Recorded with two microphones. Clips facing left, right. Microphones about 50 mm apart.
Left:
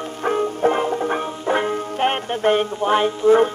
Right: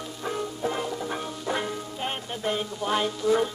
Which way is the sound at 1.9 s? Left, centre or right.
Left.